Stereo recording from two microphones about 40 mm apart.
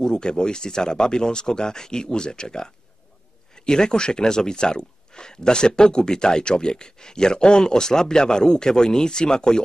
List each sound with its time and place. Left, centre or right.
0.0 s speech: centre